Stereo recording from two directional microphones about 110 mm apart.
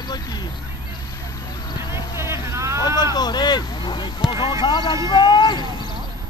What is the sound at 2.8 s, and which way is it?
Vehicle, 40° left (ahead or behind).